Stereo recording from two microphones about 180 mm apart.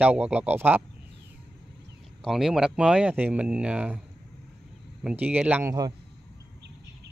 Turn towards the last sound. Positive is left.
turn(degrees=-15)  # may be behind; listen again after turning